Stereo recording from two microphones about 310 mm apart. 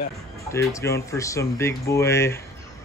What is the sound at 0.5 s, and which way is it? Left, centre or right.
Speech, centre.